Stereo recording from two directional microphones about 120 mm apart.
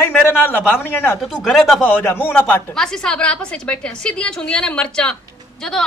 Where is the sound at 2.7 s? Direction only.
5° left (ahead or behind).